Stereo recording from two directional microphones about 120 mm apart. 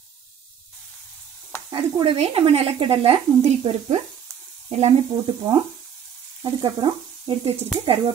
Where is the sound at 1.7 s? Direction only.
45° right (ahead or behind); by 4.9 s 60° right (ahead or behind).